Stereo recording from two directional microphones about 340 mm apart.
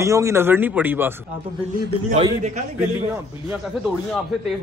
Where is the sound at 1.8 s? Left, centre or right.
Centre.